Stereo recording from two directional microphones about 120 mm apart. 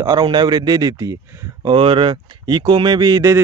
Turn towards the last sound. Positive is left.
turn(degrees=-30)  # may be behind; listen again after turning